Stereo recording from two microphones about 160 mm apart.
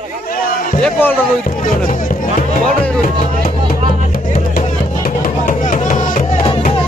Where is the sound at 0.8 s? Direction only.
10° left (ahead or behind).